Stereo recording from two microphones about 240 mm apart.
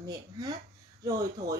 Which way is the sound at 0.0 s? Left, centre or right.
Centre.